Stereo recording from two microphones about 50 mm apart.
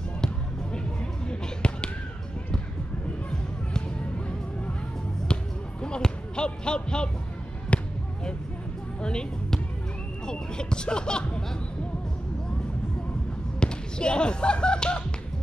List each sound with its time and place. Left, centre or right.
1.3 s basketball bounce: centre
5.3 s basketball bounce: centre
9.0 s music: centre
10.2 s hubbub: centre
13.6 s basketball bounce: centre